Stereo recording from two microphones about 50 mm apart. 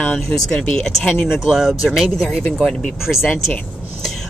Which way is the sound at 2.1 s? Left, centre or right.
Centre.